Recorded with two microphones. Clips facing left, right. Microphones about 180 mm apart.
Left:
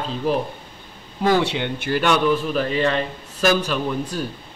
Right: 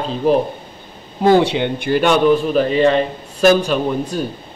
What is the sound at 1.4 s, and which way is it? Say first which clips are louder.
A man's voice: right 6 dB; 20° right (ahead or behind).